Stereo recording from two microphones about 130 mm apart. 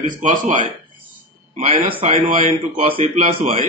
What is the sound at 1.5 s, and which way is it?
A man's voice, 50° right (ahead or behind).